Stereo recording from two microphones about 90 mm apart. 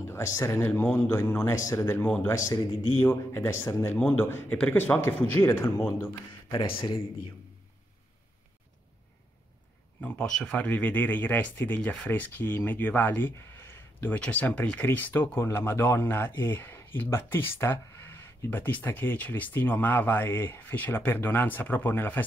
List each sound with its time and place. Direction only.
0.0 s speech: 30° left (ahead or behind)
5.0 s speech: 30° left (ahead or behind)
6.5 s speech: 65° left (ahead or behind)
9.9 s speech: 10° left (ahead or behind)